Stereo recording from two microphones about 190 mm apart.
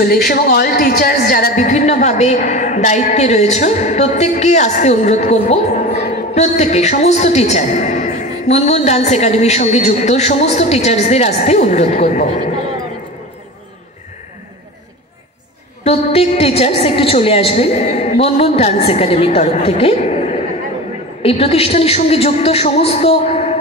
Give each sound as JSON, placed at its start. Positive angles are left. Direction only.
{"t": 0.0, "sound": "a woman's voice", "side_deg": 55}
{"t": 15.8, "sound": "a woman's voice", "side_deg": 30}